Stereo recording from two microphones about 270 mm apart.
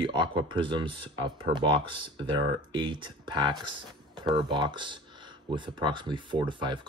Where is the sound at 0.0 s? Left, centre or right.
Centre.